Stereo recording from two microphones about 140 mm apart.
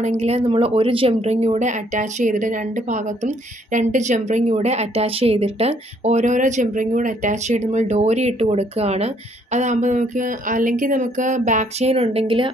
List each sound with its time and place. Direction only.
0.0 s speech: 50° right (ahead or behind)